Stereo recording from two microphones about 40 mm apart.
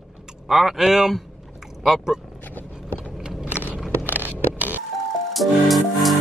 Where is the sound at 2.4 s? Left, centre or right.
Left.